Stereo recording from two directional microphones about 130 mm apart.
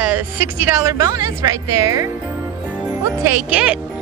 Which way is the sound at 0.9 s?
30° right (ahead or behind).